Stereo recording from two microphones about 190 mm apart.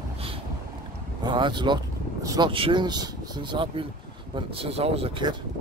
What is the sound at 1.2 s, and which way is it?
Speech, 25° right (ahead or behind).